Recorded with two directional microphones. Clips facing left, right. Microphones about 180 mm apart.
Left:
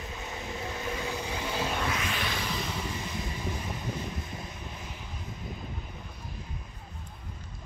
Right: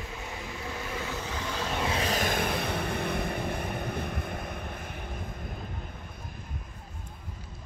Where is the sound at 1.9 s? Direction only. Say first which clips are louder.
Right 4 dB; 35° right (ahead or behind); by 5.6 s 55° right (ahead or behind).